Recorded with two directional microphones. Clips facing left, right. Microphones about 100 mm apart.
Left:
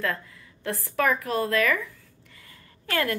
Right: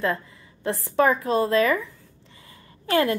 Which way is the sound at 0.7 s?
25° right (ahead or behind).